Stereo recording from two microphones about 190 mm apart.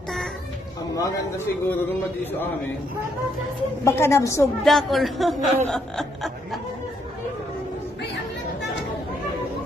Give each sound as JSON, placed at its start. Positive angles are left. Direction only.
{"t": 0.9, "sound": "speech", "side_deg": 15}
{"t": 3.8, "sound": "speech", "side_deg": 15}
{"t": 4.6, "sound": "speech", "side_deg": 0}
{"t": 5.7, "sound": "snicker", "side_deg": 0}